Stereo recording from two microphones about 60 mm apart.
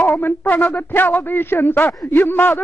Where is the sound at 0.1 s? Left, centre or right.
Left.